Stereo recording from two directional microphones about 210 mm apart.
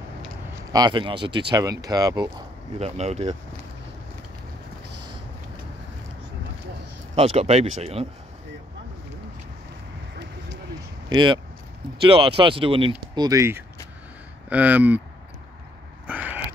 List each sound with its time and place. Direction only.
0.7 s speech: 20° right (ahead or behind)
2.8 s speech: 30° right (ahead or behind)
7.2 s speech: 30° right (ahead or behind)
11.1 s speech: 20° right (ahead or behind)
16.1 s a sound: 5° right (ahead or behind)